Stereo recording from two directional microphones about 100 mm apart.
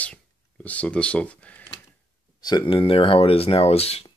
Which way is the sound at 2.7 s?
65° left (ahead or behind).